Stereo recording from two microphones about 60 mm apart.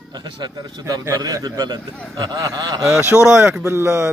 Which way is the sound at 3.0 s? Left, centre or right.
Right.